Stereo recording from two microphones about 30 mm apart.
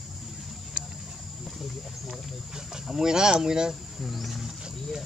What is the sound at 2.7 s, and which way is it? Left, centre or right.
Speech, centre.